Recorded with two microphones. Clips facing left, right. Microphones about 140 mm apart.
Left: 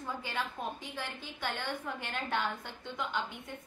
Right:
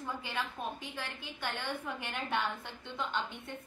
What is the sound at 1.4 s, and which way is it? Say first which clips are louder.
Speech: left 1 dB; centre (ahead or behind).